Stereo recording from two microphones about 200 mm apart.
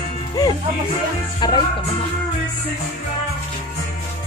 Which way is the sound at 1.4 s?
20° left (ahead or behind).